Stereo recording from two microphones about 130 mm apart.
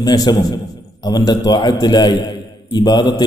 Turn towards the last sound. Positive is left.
turn(degrees=35)  # may be behind; listen again after turning